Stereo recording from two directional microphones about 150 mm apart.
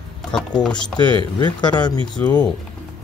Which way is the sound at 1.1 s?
30° left (ahead or behind).